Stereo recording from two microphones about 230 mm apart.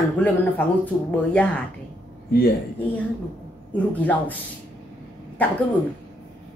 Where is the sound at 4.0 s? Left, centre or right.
Centre.